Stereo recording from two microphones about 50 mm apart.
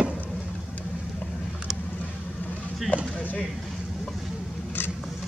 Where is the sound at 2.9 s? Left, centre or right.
Left.